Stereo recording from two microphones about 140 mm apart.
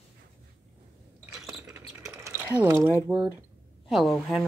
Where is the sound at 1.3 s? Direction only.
5° right (ahead or behind).